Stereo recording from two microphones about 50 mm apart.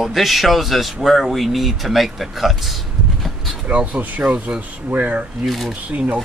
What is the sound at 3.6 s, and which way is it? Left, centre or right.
Speech, right.